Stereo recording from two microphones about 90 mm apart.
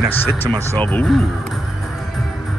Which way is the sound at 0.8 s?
20° left (ahead or behind).